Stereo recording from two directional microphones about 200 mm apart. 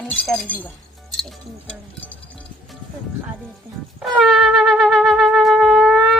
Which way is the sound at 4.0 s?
5° right (ahead or behind).